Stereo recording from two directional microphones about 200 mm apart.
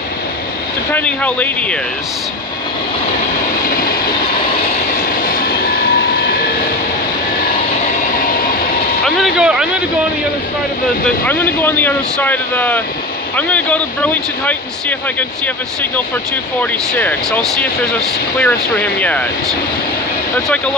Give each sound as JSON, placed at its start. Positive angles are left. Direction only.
{"t": 0.9, "sound": "speech", "side_deg": 5}
{"t": 3.6, "sound": "vehicle", "side_deg": 45}
{"t": 5.2, "sound": "vehicle", "side_deg": 45}
{"t": 9.0, "sound": "speech", "side_deg": 0}
{"t": 11.2, "sound": "speech", "side_deg": 10}
{"t": 17.0, "sound": "speech", "side_deg": 5}